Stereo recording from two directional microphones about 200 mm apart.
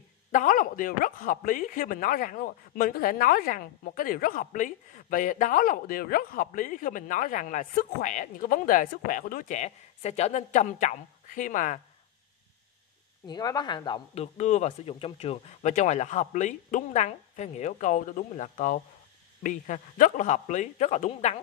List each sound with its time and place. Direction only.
0.3 s speech: 40° left (ahead or behind)
13.3 s speech: 20° left (ahead or behind)